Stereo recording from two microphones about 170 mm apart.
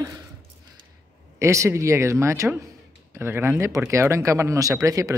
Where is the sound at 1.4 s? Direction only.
15° right (ahead or behind).